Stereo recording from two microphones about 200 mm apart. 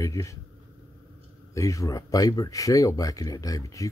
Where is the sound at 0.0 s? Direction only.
15° left (ahead or behind).